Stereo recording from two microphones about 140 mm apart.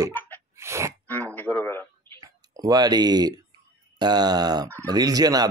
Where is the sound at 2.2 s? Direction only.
25° right (ahead or behind).